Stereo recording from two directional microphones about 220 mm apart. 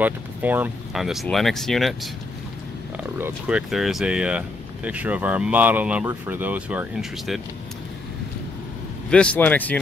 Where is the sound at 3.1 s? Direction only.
5° right (ahead or behind).